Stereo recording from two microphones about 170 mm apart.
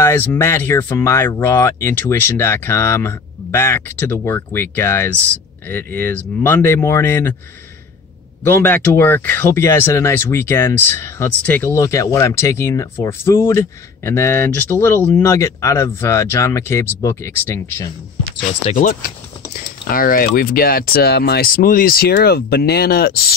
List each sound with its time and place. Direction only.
0.0 s speech: 10° left (ahead or behind)
8.5 s speech: 10° left (ahead or behind)
18.7 s typing: 50° left (ahead or behind)
20.3 s speech: 60° left (ahead or behind)